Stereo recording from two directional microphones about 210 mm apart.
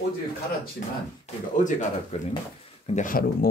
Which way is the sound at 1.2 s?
35° left (ahead or behind).